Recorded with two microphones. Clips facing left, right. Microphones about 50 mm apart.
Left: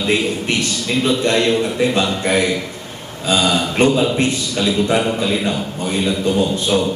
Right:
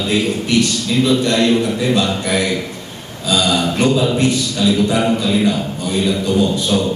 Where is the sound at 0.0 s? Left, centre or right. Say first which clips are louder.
Even; left.